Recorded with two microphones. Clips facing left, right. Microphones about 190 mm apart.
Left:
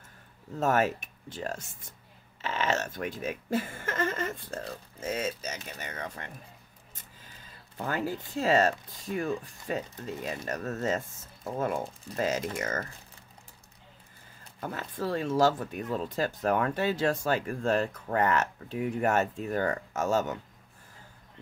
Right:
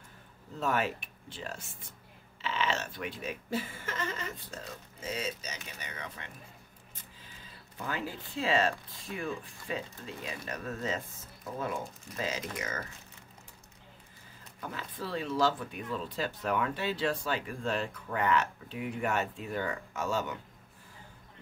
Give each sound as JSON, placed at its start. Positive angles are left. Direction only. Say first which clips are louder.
{"t": 0.6, "sound": "speech", "louder": "left 5 dB", "side_deg": 45}
{"t": 7.8, "sound": "speech", "louder": "left 5 dB", "side_deg": 45}
{"t": 14.6, "sound": "speech", "louder": "left 6 dB", "side_deg": 45}